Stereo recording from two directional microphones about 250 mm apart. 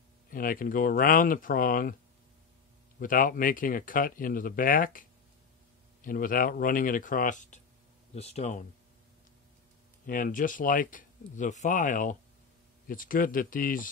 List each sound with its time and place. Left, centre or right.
0.3 s speech: left
3.0 s speech: left
6.0 s speech: left
10.0 s speech: left